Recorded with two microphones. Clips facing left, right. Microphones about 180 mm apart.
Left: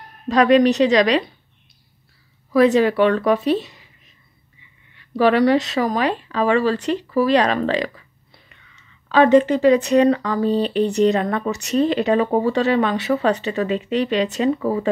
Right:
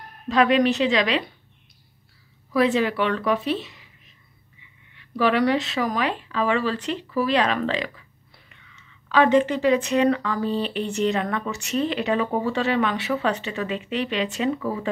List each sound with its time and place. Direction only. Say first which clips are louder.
0.3 s speech: left 5 dB; 40° left (ahead or behind)
2.5 s speech: left 6 dB; 40° left (ahead or behind)
4.9 s speech: left 5 dB; 40° left (ahead or behind)
9.1 s speech: left 5 dB; 35° left (ahead or behind)